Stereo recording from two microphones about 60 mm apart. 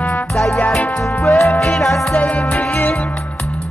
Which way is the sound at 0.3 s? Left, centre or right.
Centre.